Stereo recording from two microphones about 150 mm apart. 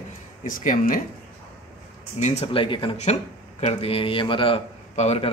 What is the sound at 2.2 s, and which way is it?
A man's voice, 45° left (ahead or behind).